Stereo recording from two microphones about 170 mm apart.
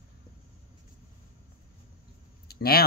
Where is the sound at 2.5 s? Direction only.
65° left (ahead or behind).